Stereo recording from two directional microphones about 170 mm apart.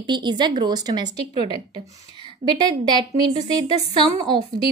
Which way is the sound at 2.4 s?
25° right (ahead or behind).